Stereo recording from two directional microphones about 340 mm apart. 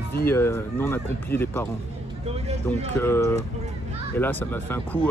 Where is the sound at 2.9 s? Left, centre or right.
Centre.